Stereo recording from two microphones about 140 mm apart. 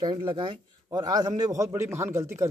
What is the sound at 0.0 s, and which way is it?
A man's voice, 35° right (ahead or behind).